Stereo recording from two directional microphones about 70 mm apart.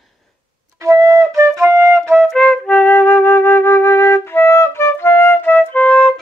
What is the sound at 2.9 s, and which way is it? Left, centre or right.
Flute, left.